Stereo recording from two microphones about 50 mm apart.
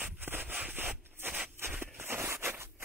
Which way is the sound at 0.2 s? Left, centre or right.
Right.